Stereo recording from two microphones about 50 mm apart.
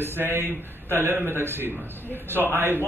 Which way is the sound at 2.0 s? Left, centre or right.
Left.